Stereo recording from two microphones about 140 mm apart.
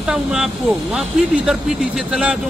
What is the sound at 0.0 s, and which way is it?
Speech, 5° right (ahead or behind).